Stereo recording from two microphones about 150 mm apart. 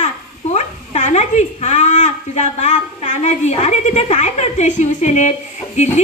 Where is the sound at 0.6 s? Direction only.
50° left (ahead or behind).